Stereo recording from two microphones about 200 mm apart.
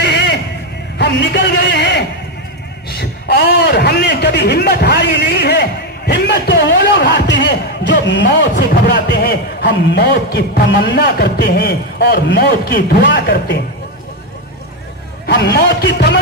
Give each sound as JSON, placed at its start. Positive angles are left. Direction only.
{"t": 0.0, "sound": "a sound", "side_deg": 55}
{"t": 0.9, "sound": "a man's voice", "side_deg": 55}
{"t": 15.2, "sound": "a man's voice", "side_deg": 55}